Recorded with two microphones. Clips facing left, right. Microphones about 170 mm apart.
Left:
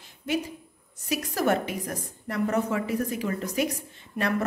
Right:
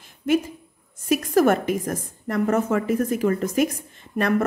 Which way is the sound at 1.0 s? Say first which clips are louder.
Right 8 dB; 50° right (ahead or behind).